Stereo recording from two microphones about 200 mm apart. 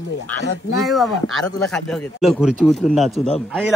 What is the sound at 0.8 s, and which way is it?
Speech, centre (ahead or behind).